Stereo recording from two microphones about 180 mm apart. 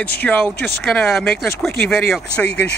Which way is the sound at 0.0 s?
10° left (ahead or behind).